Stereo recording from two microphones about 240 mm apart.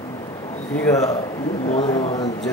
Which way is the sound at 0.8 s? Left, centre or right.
Centre.